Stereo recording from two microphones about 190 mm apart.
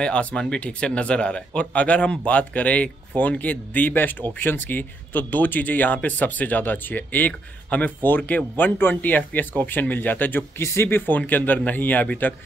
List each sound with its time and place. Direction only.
0.0 s speech: 5° left (ahead or behind)